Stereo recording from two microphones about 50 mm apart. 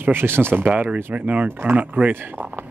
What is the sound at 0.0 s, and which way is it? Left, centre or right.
Speech, right.